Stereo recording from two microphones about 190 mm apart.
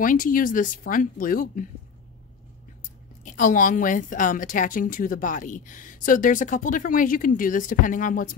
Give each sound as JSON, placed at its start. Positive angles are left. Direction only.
{"t": 0.0, "sound": "a woman's voice", "side_deg": 45}
{"t": 3.3, "sound": "a woman's voice", "side_deg": 45}